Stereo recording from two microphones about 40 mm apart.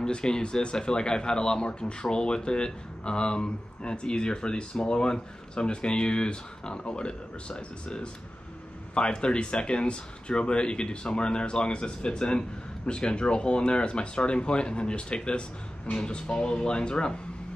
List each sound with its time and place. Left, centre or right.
0.0 s speech: centre